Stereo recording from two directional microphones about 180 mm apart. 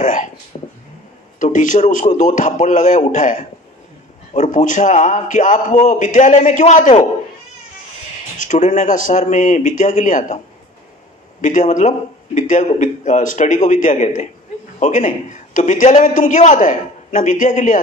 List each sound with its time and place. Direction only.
0.0 s speech: 45° left (ahead or behind)
0.5 s vehicle: 35° left (ahead or behind)
1.4 s a man's voice: 45° left (ahead or behind)
8.4 s a man's voice: 45° left (ahead or behind)
11.4 s a man's voice: 45° left (ahead or behind)